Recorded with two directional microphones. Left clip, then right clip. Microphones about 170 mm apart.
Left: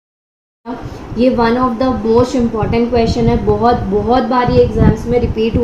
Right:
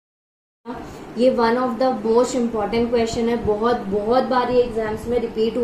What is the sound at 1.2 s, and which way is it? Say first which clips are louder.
A woman's voice: left 5 dB; 40° left (ahead or behind).